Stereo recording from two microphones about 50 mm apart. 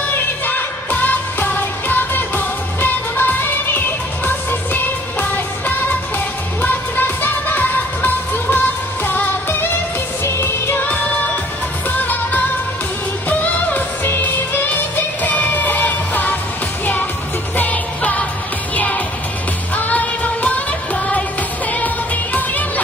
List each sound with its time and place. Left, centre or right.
0.1 s music of asia: left
10.2 s music: left
10.8 s music: left
15.2 s music: left
17.6 s music: left
19.7 s music: left